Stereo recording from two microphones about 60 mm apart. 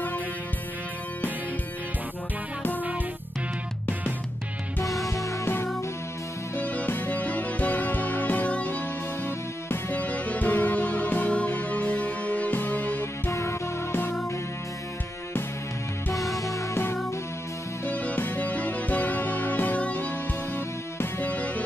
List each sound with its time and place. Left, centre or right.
5.0 s music: left
6.5 s music: left
9.7 s music: left
13.3 s music: left
16.7 s music: left
17.8 s music: left
21.2 s music: left